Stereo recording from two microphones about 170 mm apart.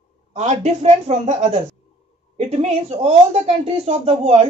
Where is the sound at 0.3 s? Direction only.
40° right (ahead or behind).